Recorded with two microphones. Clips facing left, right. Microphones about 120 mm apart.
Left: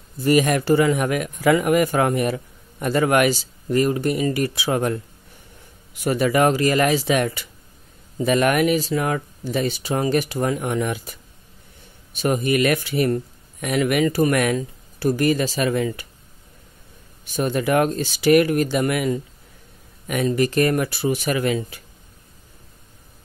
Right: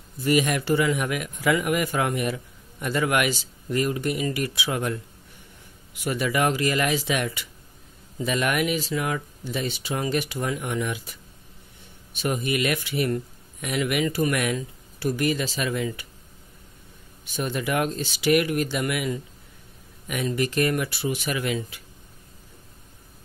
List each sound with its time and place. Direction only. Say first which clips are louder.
0.2 s a man's voice: left 5 dB; 45° left (ahead or behind)
6.0 s a man's voice: left 6 dB; 40° left (ahead or behind)
12.2 s speech: left 6 dB; 45° left (ahead or behind)
17.4 s speech: left 6 dB; 45° left (ahead or behind)